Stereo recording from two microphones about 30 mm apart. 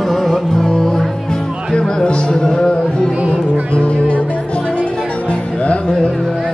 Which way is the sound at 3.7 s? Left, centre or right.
Left.